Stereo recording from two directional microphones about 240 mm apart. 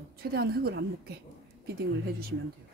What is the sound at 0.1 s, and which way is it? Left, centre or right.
Speech, right.